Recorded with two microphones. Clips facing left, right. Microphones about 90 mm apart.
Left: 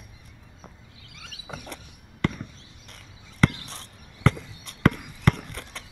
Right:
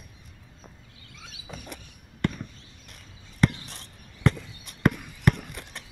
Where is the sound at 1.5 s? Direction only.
65° left (ahead or behind).